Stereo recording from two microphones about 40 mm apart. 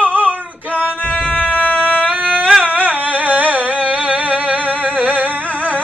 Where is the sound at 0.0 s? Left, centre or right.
Right.